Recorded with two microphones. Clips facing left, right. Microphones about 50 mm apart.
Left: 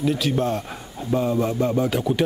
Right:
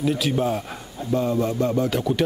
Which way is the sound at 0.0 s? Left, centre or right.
Centre.